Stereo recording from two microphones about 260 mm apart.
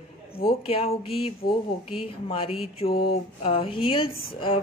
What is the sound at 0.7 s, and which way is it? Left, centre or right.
A woman's voice, left.